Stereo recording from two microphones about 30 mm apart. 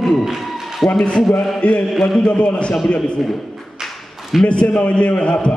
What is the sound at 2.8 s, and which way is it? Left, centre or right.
Speech, left.